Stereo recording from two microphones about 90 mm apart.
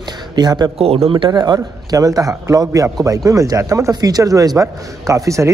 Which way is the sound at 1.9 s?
40° right (ahead or behind).